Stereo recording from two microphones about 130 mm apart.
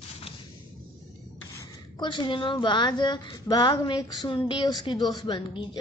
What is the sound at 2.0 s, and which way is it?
Speech, 35° left (ahead or behind).